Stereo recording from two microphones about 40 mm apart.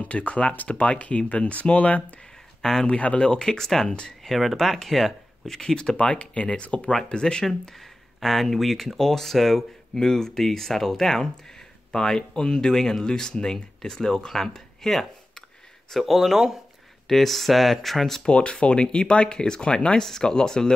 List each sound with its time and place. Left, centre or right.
0.0 s speech: left
2.6 s speech: centre
2.9 s speech: left; by 5.6 s centre
5.6 s speech: left
7.1 s speech: left
7.7 s speech: centre
18.2 s speech: left